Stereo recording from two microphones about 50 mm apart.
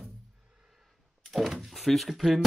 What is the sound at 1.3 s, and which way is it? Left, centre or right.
Speech, centre.